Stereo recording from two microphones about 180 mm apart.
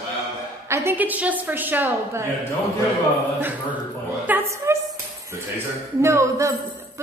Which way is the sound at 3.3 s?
10° right (ahead or behind).